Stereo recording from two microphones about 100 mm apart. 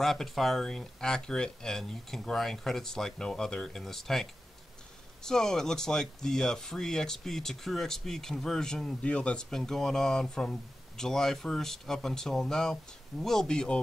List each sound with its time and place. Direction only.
0.0 s speech: centre (ahead or behind)